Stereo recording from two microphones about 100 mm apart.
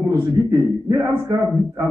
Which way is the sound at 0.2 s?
35° right (ahead or behind).